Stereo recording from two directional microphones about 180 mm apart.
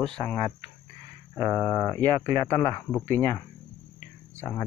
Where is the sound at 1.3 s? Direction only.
15° left (ahead or behind).